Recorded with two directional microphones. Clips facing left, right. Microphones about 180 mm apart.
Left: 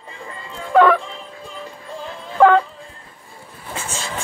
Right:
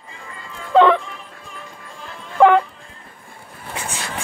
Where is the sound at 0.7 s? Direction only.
20° right (ahead or behind).